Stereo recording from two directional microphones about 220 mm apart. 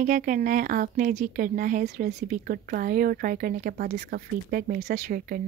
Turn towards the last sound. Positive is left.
turn(degrees=-40)  # may be behind; listen again after turning